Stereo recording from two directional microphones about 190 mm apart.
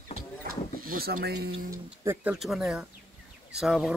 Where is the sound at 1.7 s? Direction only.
10° right (ahead or behind).